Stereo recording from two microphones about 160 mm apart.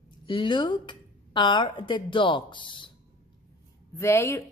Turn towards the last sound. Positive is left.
turn(degrees=15)  # may be behind; listen again after turning